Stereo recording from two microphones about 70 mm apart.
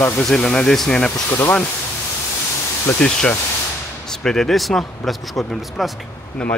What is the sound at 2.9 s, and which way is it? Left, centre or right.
A man's voice, centre.